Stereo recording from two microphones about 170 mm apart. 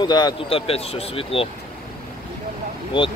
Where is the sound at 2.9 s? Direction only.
30° left (ahead or behind).